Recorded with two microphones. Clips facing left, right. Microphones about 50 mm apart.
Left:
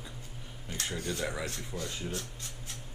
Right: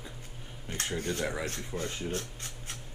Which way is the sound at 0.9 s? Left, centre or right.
Right.